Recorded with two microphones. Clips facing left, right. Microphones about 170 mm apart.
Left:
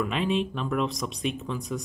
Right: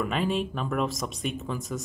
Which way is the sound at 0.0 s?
Centre (ahead or behind).